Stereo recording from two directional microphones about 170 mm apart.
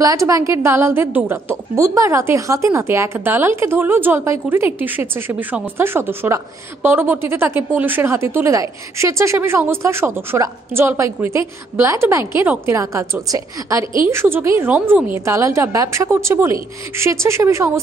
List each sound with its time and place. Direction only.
0.0 s a woman's voice: 20° right (ahead or behind)